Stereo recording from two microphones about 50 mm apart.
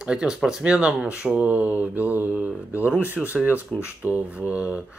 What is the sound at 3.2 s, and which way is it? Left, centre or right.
Speech, centre.